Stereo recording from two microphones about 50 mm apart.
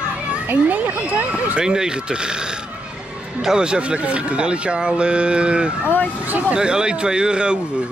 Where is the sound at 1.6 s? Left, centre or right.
Centre.